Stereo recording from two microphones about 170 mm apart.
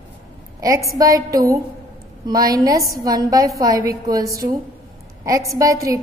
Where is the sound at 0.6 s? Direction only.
20° right (ahead or behind).